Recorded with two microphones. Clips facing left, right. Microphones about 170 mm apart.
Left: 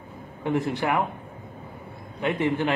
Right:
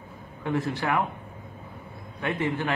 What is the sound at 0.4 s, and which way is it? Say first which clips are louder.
Speech: left 3 dB; 20° left (ahead or behind).